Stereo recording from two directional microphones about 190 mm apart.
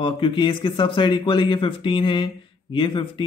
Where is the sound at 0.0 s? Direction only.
25° left (ahead or behind).